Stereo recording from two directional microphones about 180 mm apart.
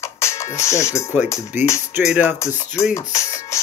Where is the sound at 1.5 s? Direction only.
10° right (ahead or behind).